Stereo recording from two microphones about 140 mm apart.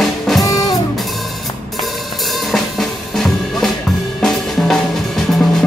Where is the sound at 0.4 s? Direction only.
25° left (ahead or behind).